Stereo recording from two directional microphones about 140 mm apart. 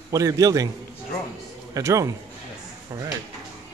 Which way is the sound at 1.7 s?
25° right (ahead or behind).